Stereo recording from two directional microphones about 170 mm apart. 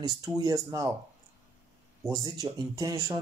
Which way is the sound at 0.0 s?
20° right (ahead or behind).